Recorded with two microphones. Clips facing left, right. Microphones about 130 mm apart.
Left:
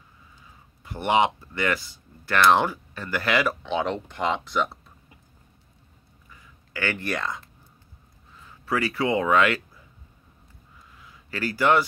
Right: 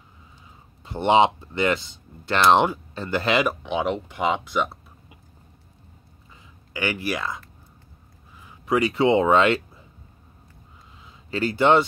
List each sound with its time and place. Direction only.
0.8 s speech: 25° right (ahead or behind); by 4.6 s 5° right (ahead or behind)
6.3 s speech: 15° right (ahead or behind)
8.4 s speech: 15° right (ahead or behind)
11.0 s a sound: 25° right (ahead or behind)